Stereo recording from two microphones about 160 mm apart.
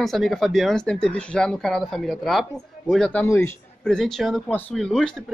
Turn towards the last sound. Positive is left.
turn(degrees=5)  # may be behind; listen again after turning